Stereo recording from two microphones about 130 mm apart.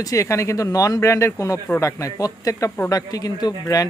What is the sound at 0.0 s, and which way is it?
Speech, 25° left (ahead or behind).